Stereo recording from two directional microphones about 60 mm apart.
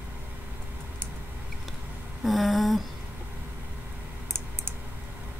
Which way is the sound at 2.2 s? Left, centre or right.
Centre.